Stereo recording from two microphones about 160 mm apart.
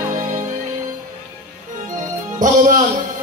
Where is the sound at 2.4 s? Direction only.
55° right (ahead or behind).